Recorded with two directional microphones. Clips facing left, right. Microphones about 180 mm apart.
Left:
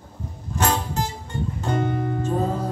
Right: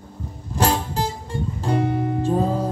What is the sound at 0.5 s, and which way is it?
Music, 30° right (ahead or behind).